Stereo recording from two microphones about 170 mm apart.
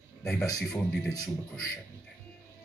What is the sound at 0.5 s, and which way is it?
Speech, 20° left (ahead or behind).